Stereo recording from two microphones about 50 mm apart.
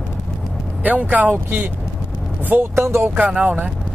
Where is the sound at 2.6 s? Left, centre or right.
Right.